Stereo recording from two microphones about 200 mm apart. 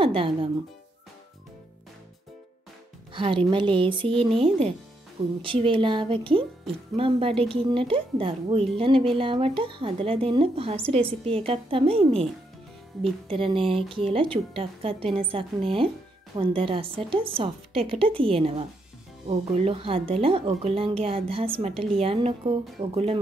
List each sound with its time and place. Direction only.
0.0 s speech: 25° right (ahead or behind)
3.1 s a woman's voice: 25° right (ahead or behind)
13.3 s a woman's voice: 25° right (ahead or behind)